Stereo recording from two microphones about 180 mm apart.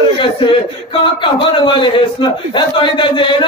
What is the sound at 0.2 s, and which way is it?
A man's voice, 25° left (ahead or behind).